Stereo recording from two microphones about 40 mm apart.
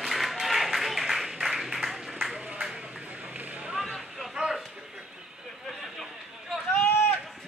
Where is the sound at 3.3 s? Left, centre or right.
Right.